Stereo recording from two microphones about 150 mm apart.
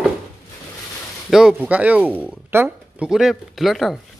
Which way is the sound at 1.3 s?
Centre (ahead or behind).